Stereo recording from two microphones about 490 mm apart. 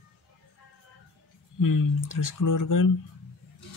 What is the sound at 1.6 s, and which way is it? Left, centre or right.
Speech, left.